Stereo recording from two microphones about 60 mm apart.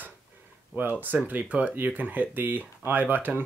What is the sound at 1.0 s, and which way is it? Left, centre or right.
Speech, right.